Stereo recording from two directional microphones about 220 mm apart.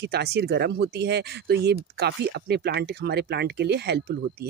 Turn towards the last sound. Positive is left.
turn(degrees=-50)  # may be behind; listen again after turning